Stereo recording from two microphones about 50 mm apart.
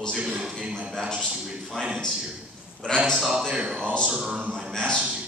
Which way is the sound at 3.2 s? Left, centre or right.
Centre.